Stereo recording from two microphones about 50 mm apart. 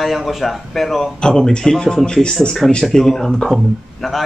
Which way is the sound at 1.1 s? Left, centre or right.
Centre.